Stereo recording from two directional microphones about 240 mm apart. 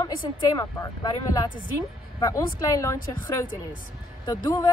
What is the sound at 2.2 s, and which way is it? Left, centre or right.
Speech, centre.